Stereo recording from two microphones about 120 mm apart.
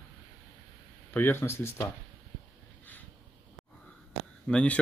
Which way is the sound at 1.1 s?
20° left (ahead or behind).